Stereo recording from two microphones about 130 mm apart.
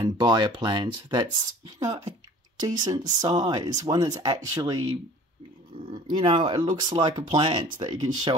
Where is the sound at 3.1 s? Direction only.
30° right (ahead or behind).